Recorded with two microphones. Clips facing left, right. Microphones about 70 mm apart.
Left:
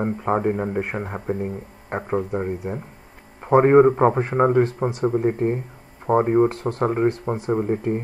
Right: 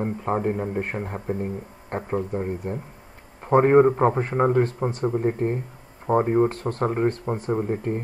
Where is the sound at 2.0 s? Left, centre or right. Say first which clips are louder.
Left 2 dB; left.